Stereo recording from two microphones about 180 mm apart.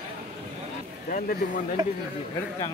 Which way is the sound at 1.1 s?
50° left (ahead or behind).